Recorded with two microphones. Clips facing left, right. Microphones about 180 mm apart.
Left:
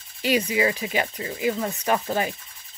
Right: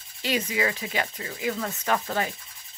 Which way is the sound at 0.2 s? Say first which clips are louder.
Left 5 dB; 15° left (ahead or behind).